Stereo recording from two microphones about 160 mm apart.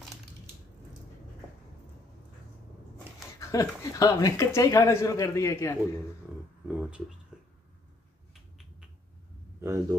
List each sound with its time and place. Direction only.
3.3 s speech: 20° left (ahead or behind)
6.7 s a sound: 5° right (ahead or behind)
9.6 s speech: 20° right (ahead or behind)